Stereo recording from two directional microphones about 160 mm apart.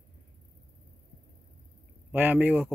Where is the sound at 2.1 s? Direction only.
10° right (ahead or behind).